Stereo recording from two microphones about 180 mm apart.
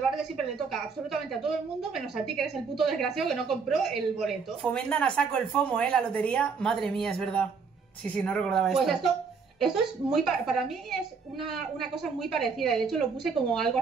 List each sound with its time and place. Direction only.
0.0 s a sound: centre (ahead or behind)
1.1 s a woman's voice: centre (ahead or behind)
10.1 s a woman's voice: centre (ahead or behind)